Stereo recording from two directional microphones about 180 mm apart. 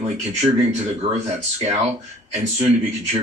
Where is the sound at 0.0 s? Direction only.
35° right (ahead or behind).